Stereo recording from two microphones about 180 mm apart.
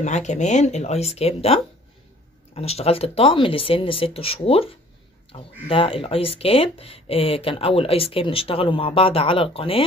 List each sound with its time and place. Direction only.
0.0 s speech: 40° left (ahead or behind)